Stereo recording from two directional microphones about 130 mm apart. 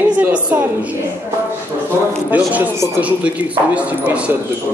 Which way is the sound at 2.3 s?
10° right (ahead or behind).